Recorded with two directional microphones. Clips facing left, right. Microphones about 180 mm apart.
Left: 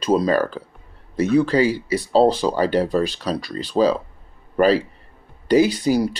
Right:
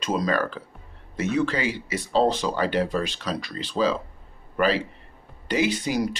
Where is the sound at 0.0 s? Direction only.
35° left (ahead or behind).